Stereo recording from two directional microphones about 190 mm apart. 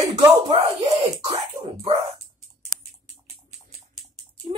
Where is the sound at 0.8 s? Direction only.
35° right (ahead or behind).